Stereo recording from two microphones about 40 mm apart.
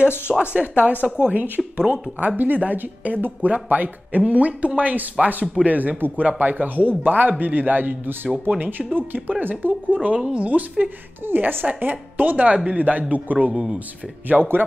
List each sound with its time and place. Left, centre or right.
0.3 s speech: right
1.0 s a woman's voice: centre
1.8 s speech: right
2.3 s a man's voice: right
4.2 s a man's voice: right
5.9 s a woman's voice: right
6.2 s a man's voice: right
10.0 s speech: right
11.2 s a woman's voice: right
11.8 s a man's voice: right
13.5 s speech: centre
14.3 s a woman's voice: right